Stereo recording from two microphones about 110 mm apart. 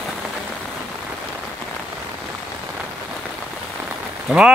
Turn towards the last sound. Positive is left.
turn(degrees=-10)  # may be behind; listen again after turning